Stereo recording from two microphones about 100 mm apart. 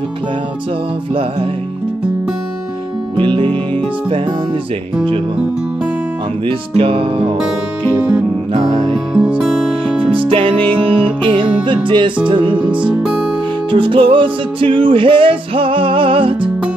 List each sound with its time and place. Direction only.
3.2 s music: 60° right (ahead or behind)
6.4 s music: 65° right (ahead or behind)
8.9 s music: 5° right (ahead or behind)
10.0 s music: 65° right (ahead or behind)
13.7 s music: 60° right (ahead or behind)